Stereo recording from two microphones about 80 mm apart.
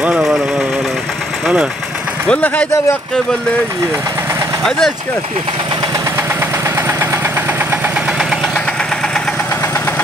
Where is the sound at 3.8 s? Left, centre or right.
Right.